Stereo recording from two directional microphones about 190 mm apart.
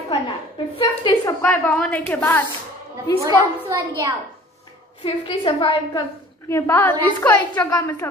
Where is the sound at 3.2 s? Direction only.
20° right (ahead or behind).